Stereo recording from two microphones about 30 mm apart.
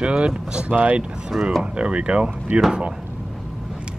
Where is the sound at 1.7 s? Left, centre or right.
Right.